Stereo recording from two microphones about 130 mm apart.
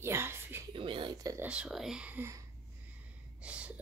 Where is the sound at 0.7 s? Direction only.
40° right (ahead or behind).